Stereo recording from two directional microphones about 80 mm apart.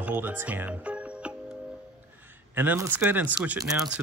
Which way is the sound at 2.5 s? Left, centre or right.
Right.